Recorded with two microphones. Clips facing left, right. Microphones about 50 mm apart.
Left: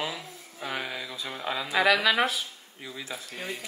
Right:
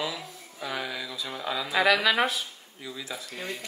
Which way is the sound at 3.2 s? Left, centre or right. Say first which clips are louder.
Even; centre.